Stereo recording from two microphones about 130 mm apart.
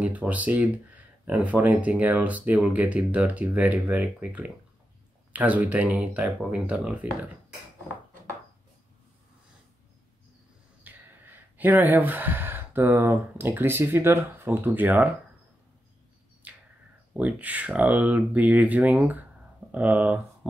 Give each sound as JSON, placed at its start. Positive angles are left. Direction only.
{"t": 0.0, "sound": "speech", "side_deg": -10}
{"t": 10.8, "sound": "speech", "side_deg": -15}
{"t": 16.4, "sound": "a sound", "side_deg": -10}
{"t": 17.1, "sound": "speech", "side_deg": -10}